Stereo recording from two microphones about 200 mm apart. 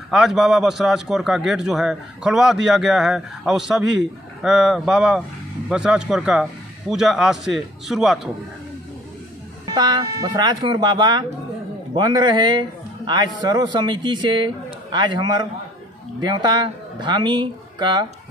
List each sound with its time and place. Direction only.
0.1 s a man's voice: centre (ahead or behind)
9.7 s a man's voice: 20° right (ahead or behind)